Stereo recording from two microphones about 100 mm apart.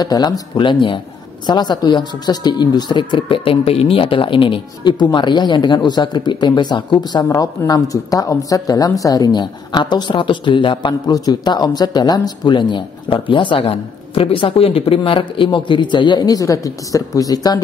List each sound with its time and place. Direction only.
0.0 s a woman's voice: 40° left (ahead or behind)